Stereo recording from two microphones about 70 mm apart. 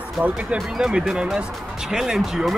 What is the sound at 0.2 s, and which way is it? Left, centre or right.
Speech, right.